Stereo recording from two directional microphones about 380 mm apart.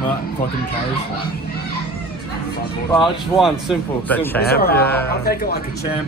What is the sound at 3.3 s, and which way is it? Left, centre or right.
Speech, centre.